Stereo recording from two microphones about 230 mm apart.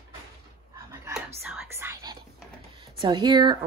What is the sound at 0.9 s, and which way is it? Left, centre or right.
Whispering, centre.